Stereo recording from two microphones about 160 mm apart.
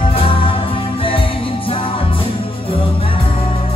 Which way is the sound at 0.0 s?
35° left (ahead or behind).